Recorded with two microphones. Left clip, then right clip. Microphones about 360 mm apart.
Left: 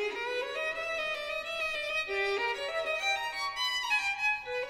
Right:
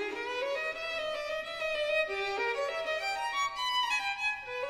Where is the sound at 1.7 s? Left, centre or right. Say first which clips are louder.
Right 7 dB; left.